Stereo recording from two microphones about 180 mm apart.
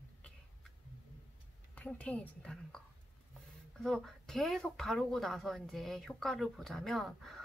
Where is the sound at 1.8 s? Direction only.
5° left (ahead or behind).